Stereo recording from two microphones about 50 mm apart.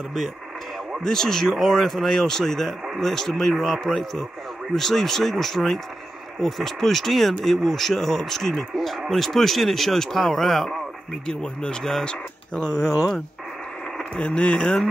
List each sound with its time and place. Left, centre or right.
1.0 s speech: centre
11.2 s speech: centre
12.7 s speech: right
14.1 s speech: left